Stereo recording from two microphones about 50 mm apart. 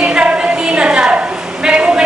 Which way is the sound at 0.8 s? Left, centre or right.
Centre.